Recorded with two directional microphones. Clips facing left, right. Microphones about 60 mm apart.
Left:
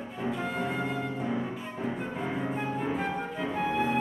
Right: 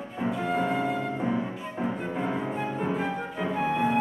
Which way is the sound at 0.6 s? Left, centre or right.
Centre.